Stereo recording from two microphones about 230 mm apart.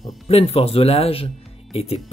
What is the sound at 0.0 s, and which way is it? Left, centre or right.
Speech, left.